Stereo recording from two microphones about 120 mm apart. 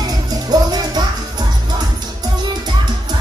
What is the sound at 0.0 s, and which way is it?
Music, 35° right (ahead or behind).